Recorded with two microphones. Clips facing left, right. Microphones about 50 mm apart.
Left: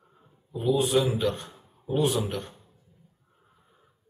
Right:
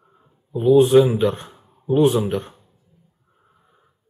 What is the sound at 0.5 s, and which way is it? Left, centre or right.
Speech, right.